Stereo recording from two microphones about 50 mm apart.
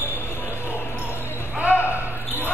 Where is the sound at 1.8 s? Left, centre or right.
Left.